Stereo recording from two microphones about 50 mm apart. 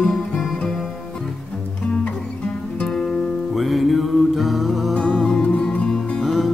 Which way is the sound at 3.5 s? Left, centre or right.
Centre.